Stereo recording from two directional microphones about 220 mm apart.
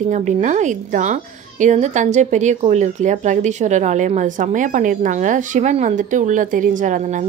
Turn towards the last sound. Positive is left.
turn(degrees=-35)  # may be behind; listen again after turning